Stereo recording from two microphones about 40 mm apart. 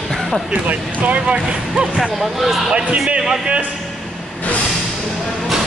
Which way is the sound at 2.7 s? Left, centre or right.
Right.